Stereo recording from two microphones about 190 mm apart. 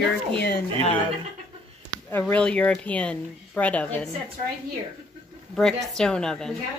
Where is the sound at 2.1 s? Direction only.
5° left (ahead or behind).